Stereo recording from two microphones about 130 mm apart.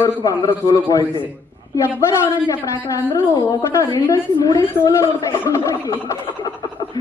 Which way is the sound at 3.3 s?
35° left (ahead or behind).